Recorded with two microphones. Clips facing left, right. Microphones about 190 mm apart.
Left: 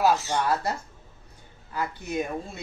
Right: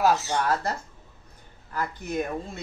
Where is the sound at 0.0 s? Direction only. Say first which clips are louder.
Even; centre (ahead or behind).